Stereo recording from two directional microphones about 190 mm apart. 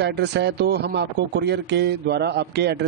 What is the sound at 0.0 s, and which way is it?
Speech, 60° right (ahead or behind).